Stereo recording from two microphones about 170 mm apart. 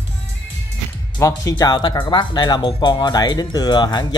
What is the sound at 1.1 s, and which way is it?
Speech, 20° left (ahead or behind).